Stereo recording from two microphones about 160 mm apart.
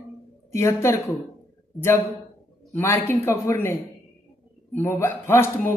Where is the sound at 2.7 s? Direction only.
15° left (ahead or behind).